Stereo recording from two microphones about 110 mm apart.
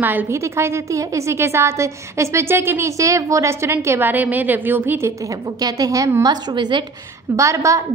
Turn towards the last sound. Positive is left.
turn(degrees=-30)  # may be behind; listen again after turning